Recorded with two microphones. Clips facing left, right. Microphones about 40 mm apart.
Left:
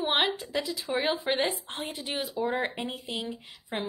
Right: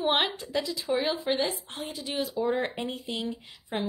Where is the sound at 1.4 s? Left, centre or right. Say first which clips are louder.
Left 1 dB; left.